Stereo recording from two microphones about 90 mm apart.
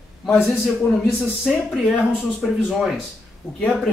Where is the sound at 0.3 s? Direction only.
Centre (ahead or behind).